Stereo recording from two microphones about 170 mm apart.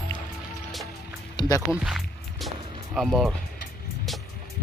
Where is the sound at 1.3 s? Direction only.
20° left (ahead or behind).